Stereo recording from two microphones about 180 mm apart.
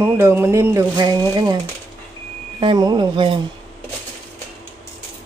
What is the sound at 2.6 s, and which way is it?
Speech, 25° right (ahead or behind).